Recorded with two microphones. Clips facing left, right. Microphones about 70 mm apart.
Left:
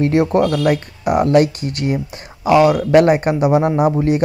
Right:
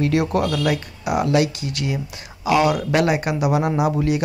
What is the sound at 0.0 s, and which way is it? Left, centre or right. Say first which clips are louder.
Speech: left 5 dB; left.